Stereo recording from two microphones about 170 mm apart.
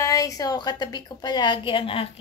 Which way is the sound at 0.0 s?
20° left (ahead or behind).